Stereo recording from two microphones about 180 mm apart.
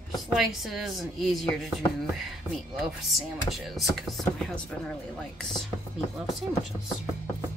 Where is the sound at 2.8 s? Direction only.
Centre (ahead or behind).